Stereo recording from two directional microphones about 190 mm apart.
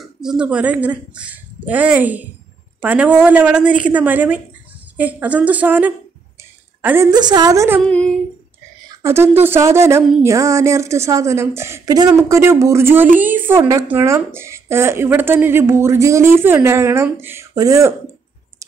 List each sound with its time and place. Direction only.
0.0 s a woman's voice: 5° right (ahead or behind)
7.1 s a woman's voice: 20° right (ahead or behind)
7.8 s female singing: 5° left (ahead or behind)
8.8 s speech: 15° right (ahead or behind)